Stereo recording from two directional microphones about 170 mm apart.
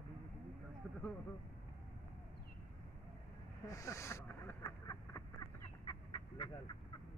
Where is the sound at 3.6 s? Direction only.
20° left (ahead or behind).